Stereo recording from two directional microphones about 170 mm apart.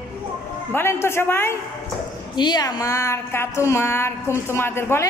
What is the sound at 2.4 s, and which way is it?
A woman's voice, 25° left (ahead or behind).